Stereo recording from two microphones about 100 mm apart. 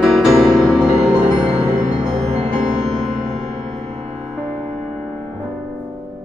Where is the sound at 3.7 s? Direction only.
90° right.